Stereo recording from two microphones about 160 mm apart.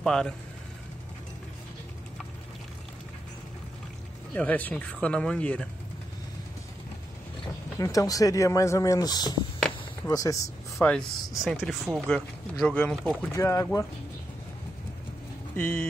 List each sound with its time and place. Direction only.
0.0 s speech: 5° left (ahead or behind)
4.4 s speech: 10° left (ahead or behind)
7.8 s speech: 20° left (ahead or behind)
11.3 s speech: 5° right (ahead or behind); by 13.7 s 20° left (ahead or behind)
15.5 s speech: 10° left (ahead or behind)